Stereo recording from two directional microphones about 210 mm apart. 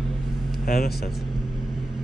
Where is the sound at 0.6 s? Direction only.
45° left (ahead or behind).